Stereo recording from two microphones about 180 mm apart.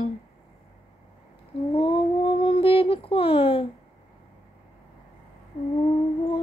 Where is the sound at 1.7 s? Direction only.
30° left (ahead or behind).